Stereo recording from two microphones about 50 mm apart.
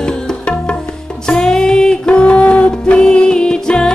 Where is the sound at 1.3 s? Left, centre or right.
Centre.